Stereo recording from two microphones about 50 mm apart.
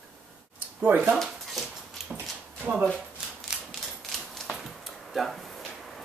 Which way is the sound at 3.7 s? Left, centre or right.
Centre.